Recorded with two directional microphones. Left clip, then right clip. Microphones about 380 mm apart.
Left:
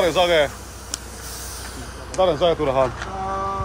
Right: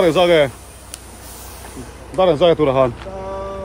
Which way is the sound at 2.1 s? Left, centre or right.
Right.